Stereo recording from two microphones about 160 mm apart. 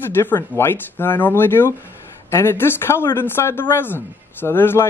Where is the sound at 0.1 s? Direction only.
15° left (ahead or behind).